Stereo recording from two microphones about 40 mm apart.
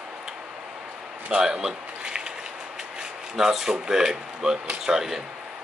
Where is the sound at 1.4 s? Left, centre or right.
Right.